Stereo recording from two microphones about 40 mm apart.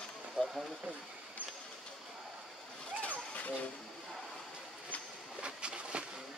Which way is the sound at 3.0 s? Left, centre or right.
Left.